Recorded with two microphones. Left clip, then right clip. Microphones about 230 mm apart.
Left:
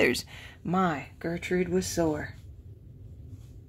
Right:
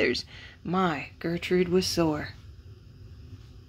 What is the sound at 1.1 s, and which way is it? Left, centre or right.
Speech, centre.